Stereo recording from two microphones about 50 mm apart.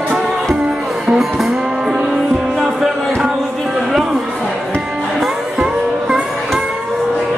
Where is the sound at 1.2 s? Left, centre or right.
Centre.